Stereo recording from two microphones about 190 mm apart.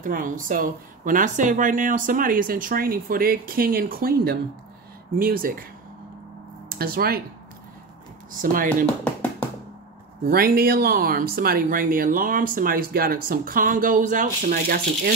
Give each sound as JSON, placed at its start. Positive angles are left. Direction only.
{"t": 0.0, "sound": "speech", "side_deg": -45}
{"t": 6.8, "sound": "speech", "side_deg": -50}
{"t": 8.3, "sound": "speech", "side_deg": -45}
{"t": 8.6, "sound": "tap", "side_deg": 5}
{"t": 10.2, "sound": "speech", "side_deg": -50}